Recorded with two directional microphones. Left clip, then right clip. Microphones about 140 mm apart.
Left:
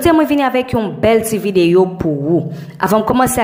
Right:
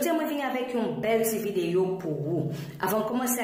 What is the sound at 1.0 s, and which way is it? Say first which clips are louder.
Speech: left 14 dB; 40° left (ahead or behind).